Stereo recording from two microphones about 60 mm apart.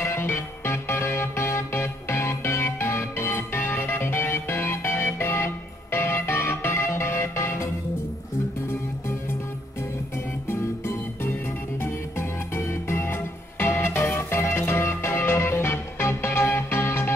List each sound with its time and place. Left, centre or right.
0.0 s music: left
10.5 s music: left